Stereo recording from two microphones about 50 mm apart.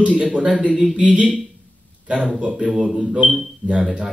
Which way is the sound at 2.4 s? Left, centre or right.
Right.